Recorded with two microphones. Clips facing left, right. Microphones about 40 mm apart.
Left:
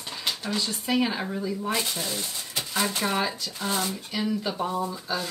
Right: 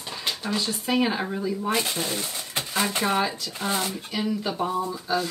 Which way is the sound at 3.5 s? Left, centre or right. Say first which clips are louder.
Right 1 dB; right.